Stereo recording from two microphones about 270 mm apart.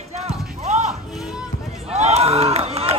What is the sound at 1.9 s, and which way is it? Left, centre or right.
Crowd, right.